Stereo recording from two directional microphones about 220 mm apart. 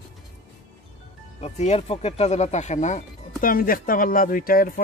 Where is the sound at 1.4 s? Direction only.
30° left (ahead or behind).